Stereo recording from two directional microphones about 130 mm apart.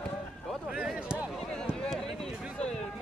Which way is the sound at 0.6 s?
5° right (ahead or behind).